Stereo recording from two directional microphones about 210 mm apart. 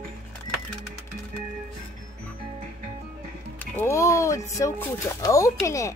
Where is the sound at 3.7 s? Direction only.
15° left (ahead or behind).